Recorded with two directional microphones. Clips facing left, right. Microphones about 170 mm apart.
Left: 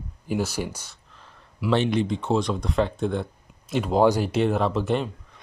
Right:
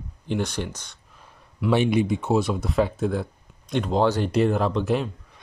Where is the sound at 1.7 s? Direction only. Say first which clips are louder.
Right 2 dB; 10° right (ahead or behind).